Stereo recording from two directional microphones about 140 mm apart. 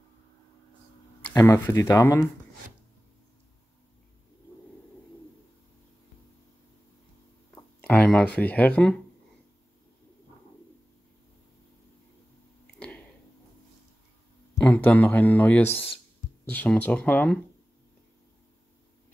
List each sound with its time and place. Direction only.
1.3 s speech: 20° left (ahead or behind)
7.8 s speech: 10° left (ahead or behind)
12.7 s a sound: 5° left (ahead or behind)
14.7 s speech: 10° left (ahead or behind)